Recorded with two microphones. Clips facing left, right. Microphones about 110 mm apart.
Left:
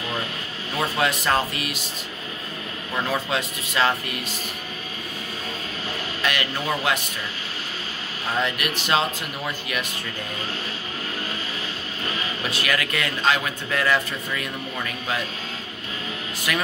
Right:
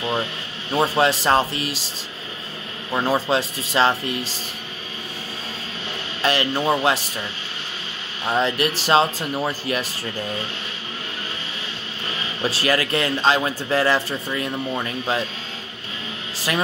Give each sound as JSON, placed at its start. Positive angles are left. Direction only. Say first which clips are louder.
{"t": 0.7, "sound": "speech", "louder": "right 5 dB", "side_deg": -30}
{"t": 2.9, "sound": "speech", "louder": "right 5 dB", "side_deg": -30}
{"t": 6.2, "sound": "speech", "louder": "right 6 dB", "side_deg": -30}
{"t": 8.3, "sound": "speech", "louder": "right 5 dB", "side_deg": -30}
{"t": 12.1, "sound": "speech", "louder": "right 4 dB", "side_deg": -30}
{"t": 16.3, "sound": "speech", "louder": "right 3 dB", "side_deg": -30}